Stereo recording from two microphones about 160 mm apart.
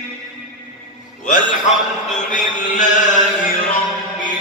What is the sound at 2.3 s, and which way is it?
Chant, 55° left (ahead or behind).